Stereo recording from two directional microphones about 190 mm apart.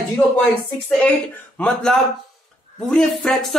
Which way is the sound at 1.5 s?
5° left (ahead or behind).